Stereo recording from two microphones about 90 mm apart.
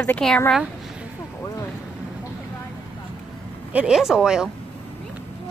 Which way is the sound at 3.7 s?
10° right (ahead or behind).